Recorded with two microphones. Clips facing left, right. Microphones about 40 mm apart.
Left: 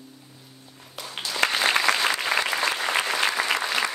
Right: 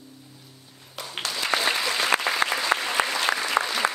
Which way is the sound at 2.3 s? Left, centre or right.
Right.